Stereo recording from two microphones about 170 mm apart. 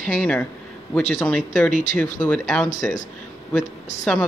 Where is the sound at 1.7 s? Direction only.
45° left (ahead or behind).